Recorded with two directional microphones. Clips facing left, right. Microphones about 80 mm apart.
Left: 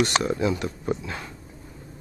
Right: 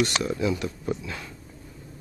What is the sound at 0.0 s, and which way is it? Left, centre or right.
Speech, left.